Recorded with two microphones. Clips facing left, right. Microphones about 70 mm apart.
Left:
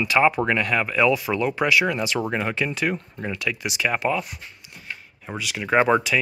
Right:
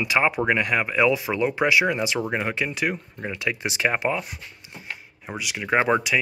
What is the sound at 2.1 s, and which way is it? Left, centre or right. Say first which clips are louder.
Speech: left 1 dB; centre.